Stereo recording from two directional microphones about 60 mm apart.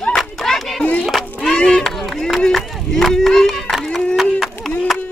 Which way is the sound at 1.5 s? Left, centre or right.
Centre.